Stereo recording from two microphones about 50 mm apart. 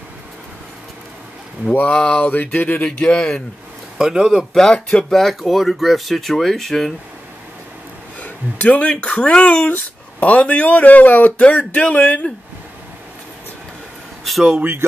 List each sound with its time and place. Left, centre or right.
1.9 s speech: left
4.0 s speech: centre
5.1 s speech: centre
8.2 s speech: left
8.8 s speech: centre
14.2 s a sound: centre